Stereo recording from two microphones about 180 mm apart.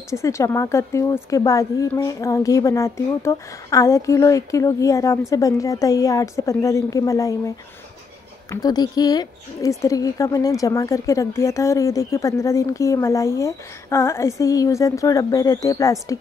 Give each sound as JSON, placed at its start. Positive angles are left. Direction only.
{"t": 0.1, "sound": "a woman's voice", "side_deg": 15}